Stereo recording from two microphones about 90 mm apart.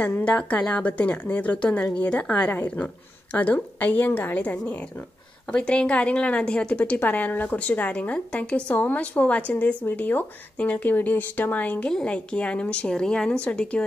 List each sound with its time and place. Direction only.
0.0 s a woman's voice: 15° left (ahead or behind)